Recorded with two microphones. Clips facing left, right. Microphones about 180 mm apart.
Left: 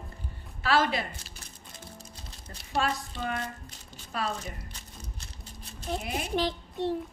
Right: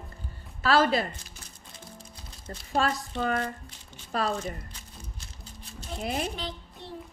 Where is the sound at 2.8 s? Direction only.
40° right (ahead or behind).